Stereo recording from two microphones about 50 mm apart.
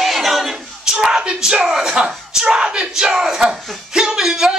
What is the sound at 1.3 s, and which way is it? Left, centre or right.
Speech, centre.